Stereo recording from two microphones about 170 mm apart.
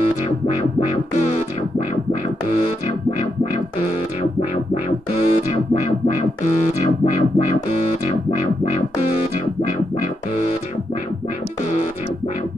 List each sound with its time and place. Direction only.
0.6 s music: 45° left (ahead or behind)
2.4 s music: 45° left (ahead or behind)
3.8 s music: 40° left (ahead or behind)